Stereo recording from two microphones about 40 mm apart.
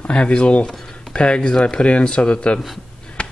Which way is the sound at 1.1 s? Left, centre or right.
Left.